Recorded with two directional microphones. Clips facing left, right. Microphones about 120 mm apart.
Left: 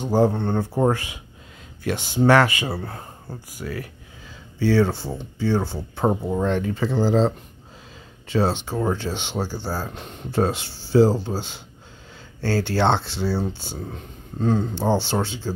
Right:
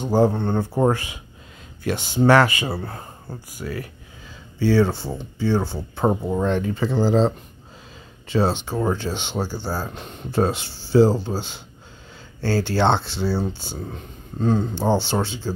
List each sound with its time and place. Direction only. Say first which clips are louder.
0.0 s speech: right 1 dB; 25° right (ahead or behind)